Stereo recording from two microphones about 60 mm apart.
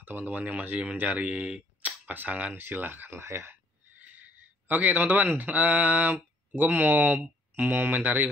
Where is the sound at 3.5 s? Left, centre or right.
Right.